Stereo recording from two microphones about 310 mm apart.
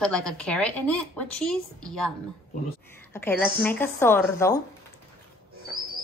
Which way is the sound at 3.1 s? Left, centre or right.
Centre.